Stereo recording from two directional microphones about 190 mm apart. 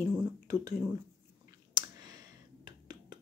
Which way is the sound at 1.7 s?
20° right (ahead or behind).